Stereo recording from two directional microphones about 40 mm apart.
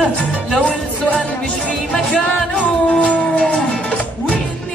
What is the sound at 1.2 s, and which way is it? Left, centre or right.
Music, left.